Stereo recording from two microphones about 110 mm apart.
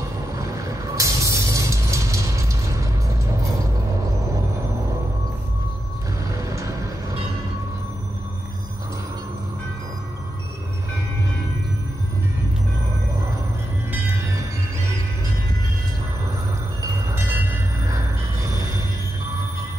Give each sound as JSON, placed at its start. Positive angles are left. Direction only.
{"t": 0.4, "sound": "vehicle", "side_deg": -30}
{"t": 6.4, "sound": "vehicle", "side_deg": -30}
{"t": 17.8, "sound": "train", "side_deg": -30}